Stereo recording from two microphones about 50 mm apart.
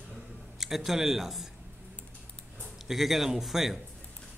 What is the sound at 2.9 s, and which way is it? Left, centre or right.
Speech, centre.